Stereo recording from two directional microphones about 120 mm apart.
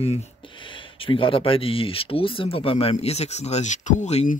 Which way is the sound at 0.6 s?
45° left (ahead or behind).